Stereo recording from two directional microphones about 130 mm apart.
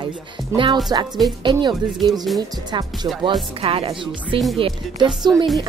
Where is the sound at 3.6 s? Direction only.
45° right (ahead or behind).